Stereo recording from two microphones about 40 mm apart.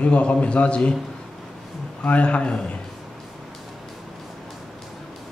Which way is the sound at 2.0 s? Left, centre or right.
Left.